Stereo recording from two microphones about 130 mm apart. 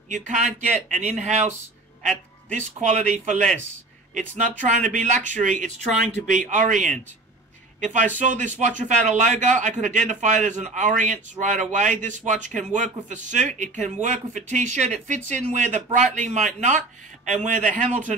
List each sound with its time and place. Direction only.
0.1 s speech: 65° right (ahead or behind)
2.8 s speech: 60° right (ahead or behind)
4.6 s speech: 70° right (ahead or behind)